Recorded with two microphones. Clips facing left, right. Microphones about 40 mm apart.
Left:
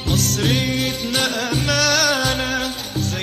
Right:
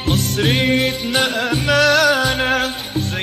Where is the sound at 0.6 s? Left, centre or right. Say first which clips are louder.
Right 5 dB; centre.